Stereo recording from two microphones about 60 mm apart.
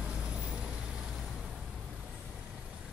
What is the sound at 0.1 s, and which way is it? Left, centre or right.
Vehicle, centre.